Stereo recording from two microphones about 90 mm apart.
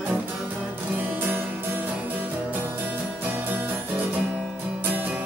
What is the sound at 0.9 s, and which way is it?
Music, 20° right (ahead or behind).